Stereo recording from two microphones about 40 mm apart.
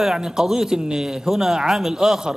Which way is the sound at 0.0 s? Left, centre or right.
Centre.